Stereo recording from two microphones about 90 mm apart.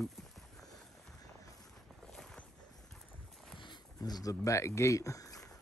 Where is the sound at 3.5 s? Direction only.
55° left (ahead or behind).